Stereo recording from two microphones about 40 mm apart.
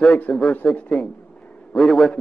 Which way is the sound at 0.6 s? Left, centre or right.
Left.